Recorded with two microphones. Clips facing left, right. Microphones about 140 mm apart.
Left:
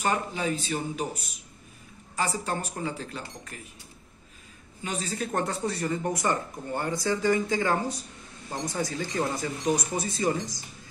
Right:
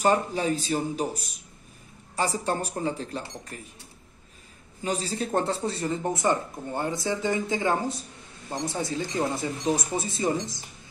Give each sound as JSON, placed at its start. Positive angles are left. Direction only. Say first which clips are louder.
{"t": 0.0, "sound": "speech", "louder": "right 5 dB", "side_deg": -35}
{"t": 4.8, "sound": "speech", "louder": "right 3 dB", "side_deg": -35}